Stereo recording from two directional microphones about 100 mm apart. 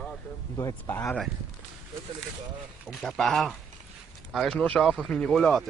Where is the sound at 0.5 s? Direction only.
35° left (ahead or behind).